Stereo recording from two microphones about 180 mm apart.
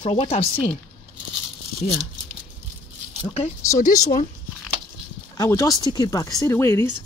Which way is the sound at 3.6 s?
20° left (ahead or behind).